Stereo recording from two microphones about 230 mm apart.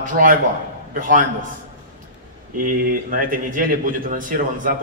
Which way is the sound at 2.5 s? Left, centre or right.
Right.